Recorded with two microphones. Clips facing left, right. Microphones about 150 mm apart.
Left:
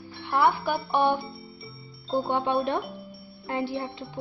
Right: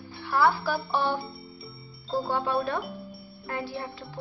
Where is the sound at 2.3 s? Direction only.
20° left (ahead or behind).